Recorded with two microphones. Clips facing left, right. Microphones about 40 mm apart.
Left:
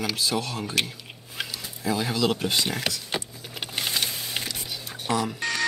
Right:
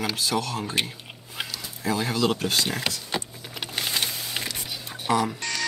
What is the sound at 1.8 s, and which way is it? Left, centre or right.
Speech, centre.